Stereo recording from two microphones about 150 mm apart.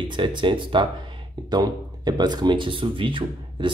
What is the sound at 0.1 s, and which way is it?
Speech, 30° right (ahead or behind).